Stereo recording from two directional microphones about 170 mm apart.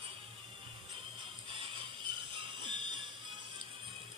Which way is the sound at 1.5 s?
30° right (ahead or behind).